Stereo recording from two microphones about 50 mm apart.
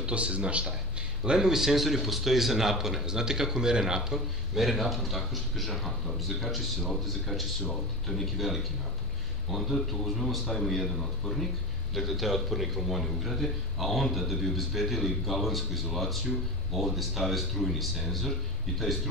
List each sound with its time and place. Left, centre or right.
0.0 s a man's voice: right; by 18.3 s centre